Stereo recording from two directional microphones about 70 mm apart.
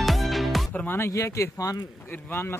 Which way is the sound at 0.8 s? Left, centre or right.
Left.